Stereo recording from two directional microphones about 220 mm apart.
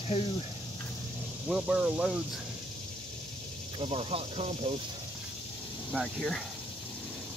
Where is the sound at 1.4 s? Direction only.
5° right (ahead or behind).